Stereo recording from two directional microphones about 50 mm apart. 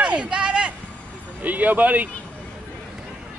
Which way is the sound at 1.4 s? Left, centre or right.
Right.